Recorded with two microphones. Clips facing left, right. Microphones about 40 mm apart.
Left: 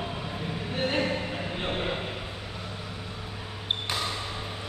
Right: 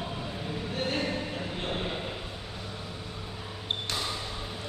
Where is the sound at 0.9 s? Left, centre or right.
Left.